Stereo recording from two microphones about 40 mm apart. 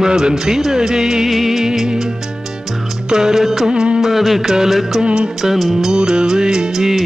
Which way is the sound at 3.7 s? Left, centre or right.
Right.